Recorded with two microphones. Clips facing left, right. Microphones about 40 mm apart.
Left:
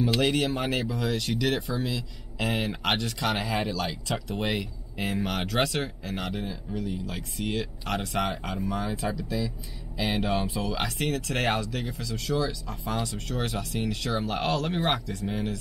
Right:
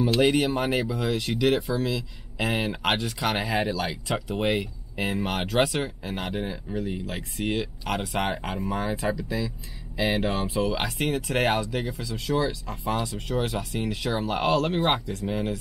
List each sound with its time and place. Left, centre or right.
0.2 s speech: centre
2.6 s speech: centre
7.5 s speech: centre
8.2 s speech: right